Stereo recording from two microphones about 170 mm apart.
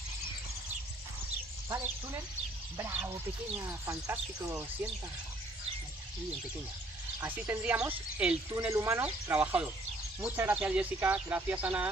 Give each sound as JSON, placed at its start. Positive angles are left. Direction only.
{"t": 2.8, "sound": "speech", "side_deg": -10}
{"t": 7.2, "sound": "speech", "side_deg": -10}
{"t": 8.5, "sound": "speech", "side_deg": -20}